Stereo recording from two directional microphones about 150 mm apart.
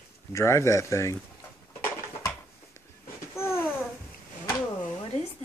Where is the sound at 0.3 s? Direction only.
20° left (ahead or behind).